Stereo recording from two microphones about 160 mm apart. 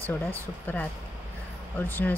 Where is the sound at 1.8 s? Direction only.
10° left (ahead or behind).